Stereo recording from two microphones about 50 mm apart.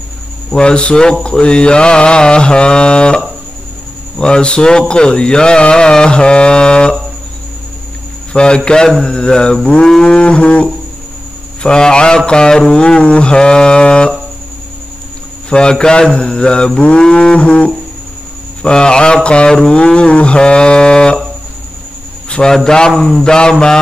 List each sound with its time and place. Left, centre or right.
0.5 s mantra: centre
4.2 s speech: centre
8.3 s speech: centre
10.1 s mantra: left
11.6 s speech: centre
15.5 s speech: centre
18.6 s mantra: centre
22.5 s speech: centre